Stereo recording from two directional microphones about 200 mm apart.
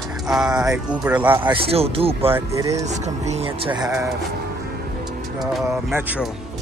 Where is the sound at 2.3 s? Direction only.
15° right (ahead or behind).